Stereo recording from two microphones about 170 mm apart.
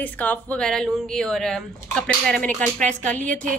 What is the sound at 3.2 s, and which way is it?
Speech, 50° right (ahead or behind).